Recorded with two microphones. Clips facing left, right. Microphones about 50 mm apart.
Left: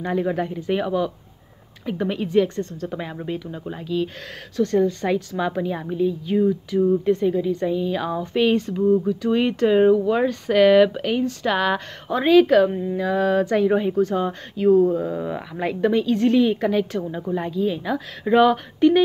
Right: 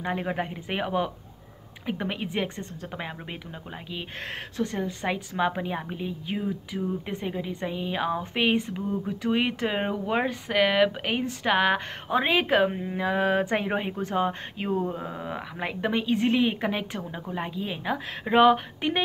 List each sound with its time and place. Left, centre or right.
0.0 s a woman's voice: right
10.4 s speech: centre
11.1 s a woman's voice: right
15.7 s a woman's voice: right